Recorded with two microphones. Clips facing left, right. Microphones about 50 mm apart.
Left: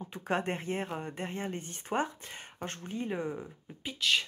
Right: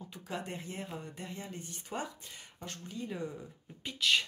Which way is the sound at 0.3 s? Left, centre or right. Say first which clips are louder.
Left 9 dB; left.